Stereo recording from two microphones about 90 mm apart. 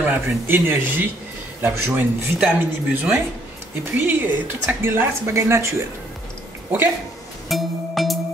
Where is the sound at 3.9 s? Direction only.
20° right (ahead or behind).